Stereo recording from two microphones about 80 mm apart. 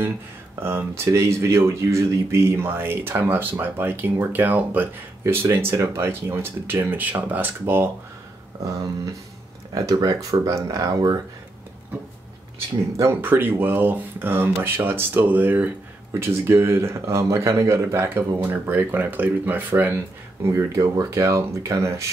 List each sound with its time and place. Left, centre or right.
0.6 s speech: right
8.6 s speech: right
13.1 s speech: right
20.4 s speech: right